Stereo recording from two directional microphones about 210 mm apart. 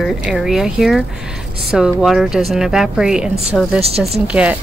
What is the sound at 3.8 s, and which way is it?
Speech, 30° right (ahead or behind).